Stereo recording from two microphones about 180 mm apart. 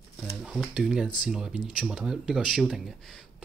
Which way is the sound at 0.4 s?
Centre (ahead or behind).